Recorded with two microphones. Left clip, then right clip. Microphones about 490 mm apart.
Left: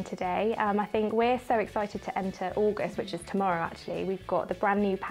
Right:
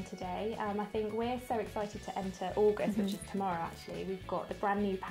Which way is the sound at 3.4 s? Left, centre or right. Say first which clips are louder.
Left 8 dB; left.